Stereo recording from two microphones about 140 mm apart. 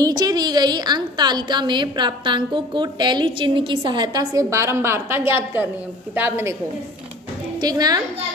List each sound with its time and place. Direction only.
0.0 s a woman's voice: 30° right (ahead or behind)
7.6 s a woman's voice: 25° right (ahead or behind)